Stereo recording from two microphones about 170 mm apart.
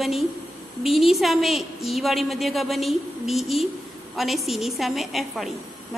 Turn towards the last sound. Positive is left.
turn(degrees=0)  # may be behind; listen again after turning